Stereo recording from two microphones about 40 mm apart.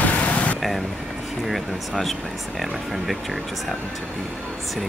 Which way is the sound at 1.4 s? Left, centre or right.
Centre.